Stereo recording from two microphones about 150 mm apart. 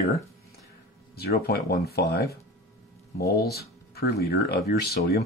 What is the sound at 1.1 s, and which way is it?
Speech, 90° left.